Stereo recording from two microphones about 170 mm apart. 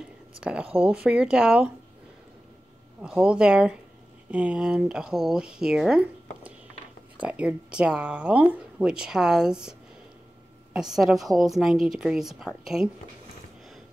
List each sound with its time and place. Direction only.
0.4 s speech: 5° right (ahead or behind)
3.0 s speech: 5° right (ahead or behind)